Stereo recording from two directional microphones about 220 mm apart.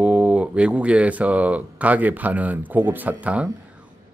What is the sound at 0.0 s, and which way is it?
Speech, 5° right (ahead or behind).